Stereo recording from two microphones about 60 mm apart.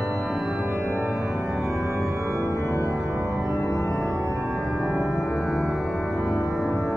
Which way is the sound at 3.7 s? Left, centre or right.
Left.